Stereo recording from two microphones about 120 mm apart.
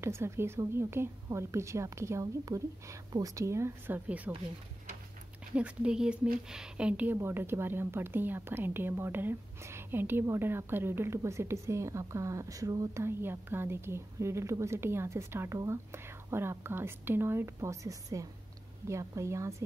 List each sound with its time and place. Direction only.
0.0 s speech: 20° right (ahead or behind)
5.5 s speech: 10° right (ahead or behind); by 19.5 s 25° right (ahead or behind)